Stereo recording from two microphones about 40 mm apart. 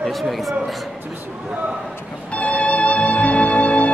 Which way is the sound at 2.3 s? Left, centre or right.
Left.